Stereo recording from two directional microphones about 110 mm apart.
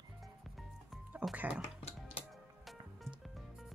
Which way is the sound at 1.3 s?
15° right (ahead or behind).